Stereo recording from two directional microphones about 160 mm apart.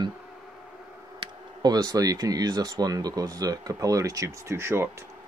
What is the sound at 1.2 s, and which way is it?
Speech, 25° right (ahead or behind).